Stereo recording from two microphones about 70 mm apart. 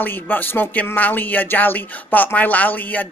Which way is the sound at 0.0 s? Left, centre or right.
Left.